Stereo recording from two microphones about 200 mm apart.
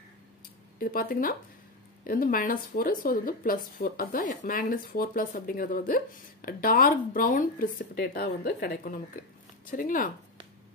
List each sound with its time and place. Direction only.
0.7 s speech: 45° left (ahead or behind)